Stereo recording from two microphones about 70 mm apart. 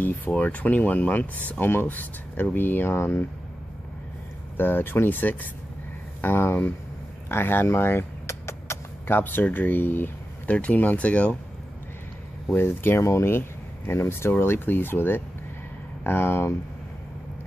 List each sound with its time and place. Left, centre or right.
0.4 s speech: left
4.6 s speech: left
12.5 s speech: left